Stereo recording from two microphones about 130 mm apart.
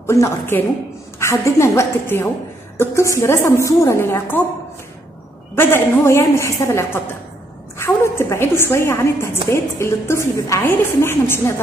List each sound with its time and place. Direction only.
0.0 s a woman's voice: 20° left (ahead or behind)
5.6 s a woman's voice: 20° left (ahead or behind)